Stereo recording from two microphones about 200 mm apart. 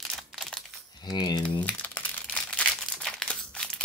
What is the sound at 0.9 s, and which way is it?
Speech, 20° left (ahead or behind).